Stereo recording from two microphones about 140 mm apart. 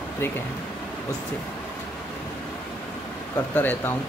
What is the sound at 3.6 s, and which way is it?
Speech, 15° left (ahead or behind).